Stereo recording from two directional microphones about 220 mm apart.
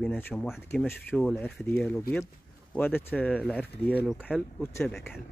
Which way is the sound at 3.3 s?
5° right (ahead or behind).